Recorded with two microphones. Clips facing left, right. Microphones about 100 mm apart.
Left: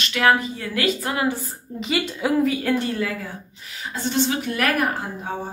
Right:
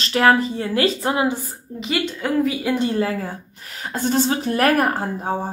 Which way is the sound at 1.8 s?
Centre (ahead or behind).